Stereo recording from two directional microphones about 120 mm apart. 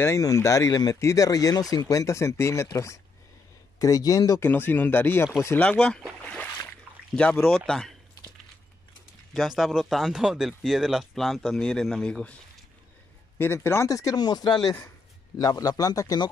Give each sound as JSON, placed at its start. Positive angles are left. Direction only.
{"t": 0.0, "sound": "speech", "side_deg": 25}
{"t": 4.4, "sound": "speech", "side_deg": 15}
{"t": 6.2, "sound": "a sound", "side_deg": 15}
{"t": 7.4, "sound": "speech", "side_deg": 5}
{"t": 9.3, "sound": "speech", "side_deg": 0}
{"t": 13.4, "sound": "speech", "side_deg": 20}